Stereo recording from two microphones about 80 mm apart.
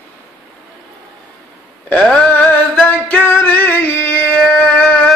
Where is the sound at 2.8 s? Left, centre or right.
Centre.